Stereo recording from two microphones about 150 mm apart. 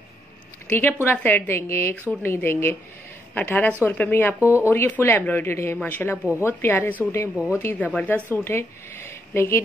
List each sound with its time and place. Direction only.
0.7 s a woman's voice: 15° left (ahead or behind)
6.1 s speech: 10° right (ahead or behind)
6.4 s a woman's voice: 15° left (ahead or behind)
7.3 s speech: 10° right (ahead or behind)
7.6 s a woman's voice: 10° left (ahead or behind)